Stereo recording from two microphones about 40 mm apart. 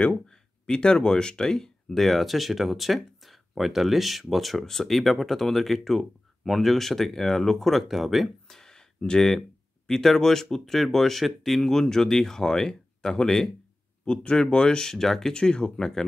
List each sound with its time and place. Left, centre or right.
0.7 s speech: left
2.0 s speech: centre
8.5 s a sound: centre
9.8 s speech: centre
14.0 s speech: left
15.3 s speech: left